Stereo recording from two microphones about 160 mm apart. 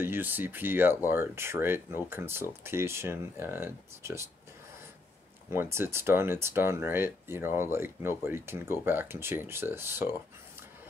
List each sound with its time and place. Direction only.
0.0 s speech: 15° right (ahead or behind)
5.5 s speech: 15° right (ahead or behind)